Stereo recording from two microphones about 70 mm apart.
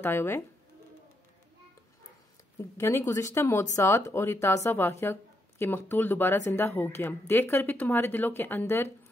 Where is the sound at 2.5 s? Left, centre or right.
Left.